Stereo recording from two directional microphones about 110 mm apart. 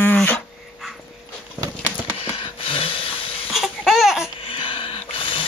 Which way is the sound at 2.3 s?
55° left (ahead or behind).